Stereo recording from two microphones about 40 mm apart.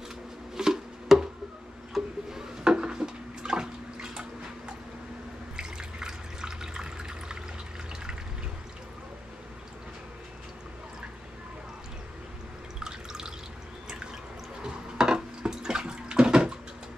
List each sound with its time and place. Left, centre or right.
0.6 s a sound: centre
2.0 s music: centre
2.6 s bathtub: right
5.6 s water: centre
12.8 s drip: centre
14.6 s water: centre